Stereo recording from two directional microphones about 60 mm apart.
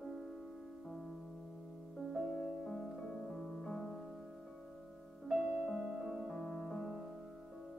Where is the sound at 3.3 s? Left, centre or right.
Centre.